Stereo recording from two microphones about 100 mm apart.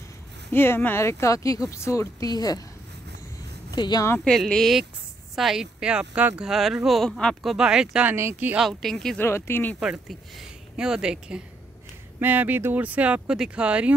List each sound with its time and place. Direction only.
0.5 s speech: 20° left (ahead or behind); by 2.6 s 40° left (ahead or behind)
3.7 s speech: 45° left (ahead or behind)
4.2 s speech: 5° left (ahead or behind)
7.5 s speech: 5° right (ahead or behind)
8.1 s speech: 20° right (ahead or behind)
8.5 s speech: centre (ahead or behind)
9.2 s speech: 20° left (ahead or behind)
9.8 s speech: centre (ahead or behind)